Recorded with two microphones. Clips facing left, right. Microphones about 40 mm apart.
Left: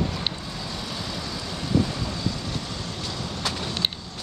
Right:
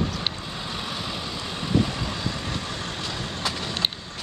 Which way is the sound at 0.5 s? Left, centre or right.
Right.